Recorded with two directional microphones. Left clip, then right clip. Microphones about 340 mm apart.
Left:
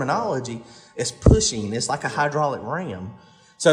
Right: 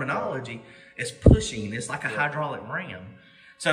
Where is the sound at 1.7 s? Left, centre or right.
Centre.